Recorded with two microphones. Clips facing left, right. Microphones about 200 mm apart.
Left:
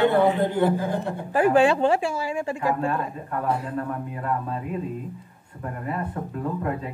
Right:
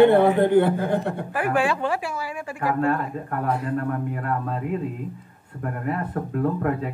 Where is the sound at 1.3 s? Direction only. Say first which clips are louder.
Left 6 dB; 25° left (ahead or behind).